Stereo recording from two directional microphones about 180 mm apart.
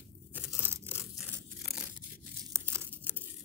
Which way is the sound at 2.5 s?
15° right (ahead or behind).